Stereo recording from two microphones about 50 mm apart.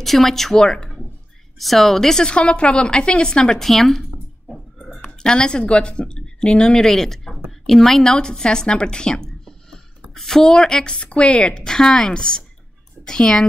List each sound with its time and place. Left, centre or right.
0.0 s a woman's voice: centre
5.0 s a woman's voice: centre
11.1 s a woman's voice: left
11.5 s a woman's voice: centre